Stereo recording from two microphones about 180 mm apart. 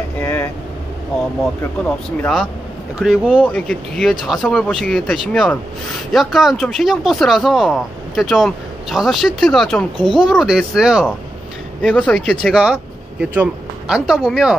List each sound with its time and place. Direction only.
0.2 s vehicle: 10° left (ahead or behind)
3.0 s speech: centre (ahead or behind)
12.4 s speech: 5° right (ahead or behind)